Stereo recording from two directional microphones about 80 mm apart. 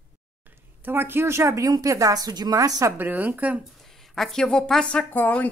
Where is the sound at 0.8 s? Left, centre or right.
Right.